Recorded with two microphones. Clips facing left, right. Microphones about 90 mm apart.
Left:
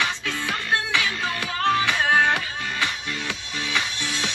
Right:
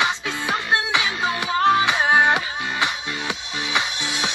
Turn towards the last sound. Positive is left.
turn(degrees=-20)  # may be behind; listen again after turning